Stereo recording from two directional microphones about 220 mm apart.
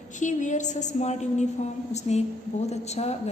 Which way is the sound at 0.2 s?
35° left (ahead or behind).